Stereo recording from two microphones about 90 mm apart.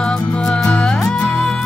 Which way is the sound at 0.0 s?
10° left (ahead or behind).